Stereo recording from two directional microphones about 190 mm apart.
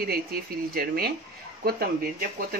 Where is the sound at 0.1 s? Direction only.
55° right (ahead or behind).